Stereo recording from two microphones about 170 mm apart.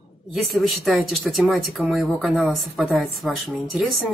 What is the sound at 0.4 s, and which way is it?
A man's voice, centre (ahead or behind).